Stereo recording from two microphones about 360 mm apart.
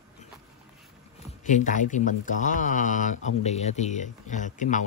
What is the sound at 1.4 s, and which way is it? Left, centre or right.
Speech, left.